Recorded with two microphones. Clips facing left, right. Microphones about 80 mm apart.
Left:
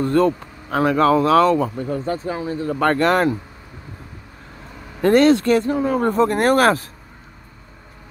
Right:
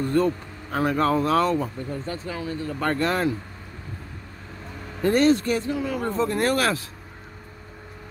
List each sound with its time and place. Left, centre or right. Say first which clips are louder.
0.0 s speech: left 5 dB; left
2.0 s speech: left 7 dB; left
2.8 s speech: left 7 dB; left
5.0 s speech: left 6 dB; left
5.7 s speech: left 7 dB; left
6.0 s speech: left 6 dB; left